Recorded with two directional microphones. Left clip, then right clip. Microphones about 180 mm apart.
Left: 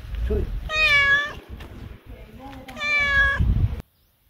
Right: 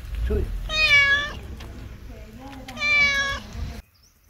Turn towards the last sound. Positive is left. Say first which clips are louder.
# left 1 dB
turn(degrees=15)  # may be behind; listen again after turning